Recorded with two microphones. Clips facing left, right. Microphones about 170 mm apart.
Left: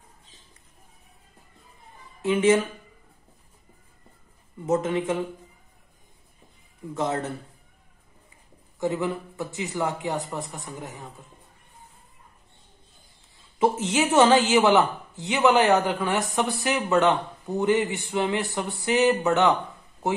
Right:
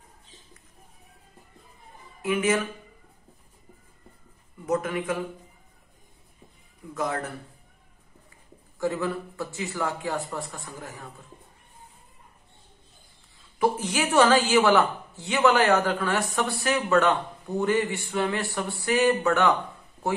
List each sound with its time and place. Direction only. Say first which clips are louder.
2.2 s a man's voice: left 4 dB; 25° left (ahead or behind)
4.6 s a man's voice: left 3 dB; 25° left (ahead or behind)
6.9 s a man's voice: left 2 dB; 25° left (ahead or behind)
8.7 s a man's voice: left 1 dB; 20° left (ahead or behind)
13.6 s a man's voice: left 2 dB; 20° left (ahead or behind)